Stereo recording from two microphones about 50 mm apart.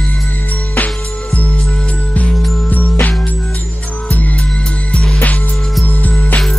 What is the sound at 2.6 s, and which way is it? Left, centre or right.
Music, left.